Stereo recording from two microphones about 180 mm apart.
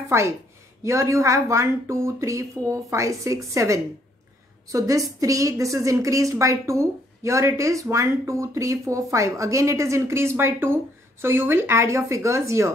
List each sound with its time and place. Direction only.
0.1 s a woman's voice: 15° right (ahead or behind)